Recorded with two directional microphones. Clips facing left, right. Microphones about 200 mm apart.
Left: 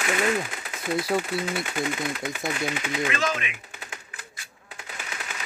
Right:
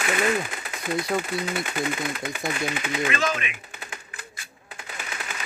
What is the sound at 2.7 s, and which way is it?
Typewriter, 55° right (ahead or behind).